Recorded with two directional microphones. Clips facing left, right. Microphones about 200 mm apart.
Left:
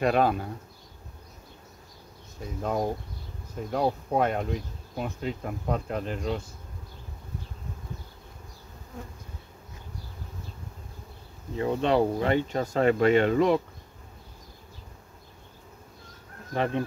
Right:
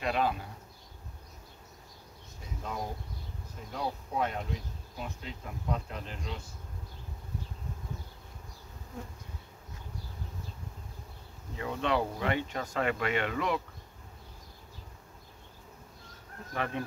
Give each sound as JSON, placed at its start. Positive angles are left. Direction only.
{"t": 0.0, "sound": "speech", "side_deg": 50}
{"t": 2.6, "sound": "speech", "side_deg": 55}
{"t": 11.5, "sound": "speech", "side_deg": 30}
{"t": 16.5, "sound": "bee", "side_deg": 30}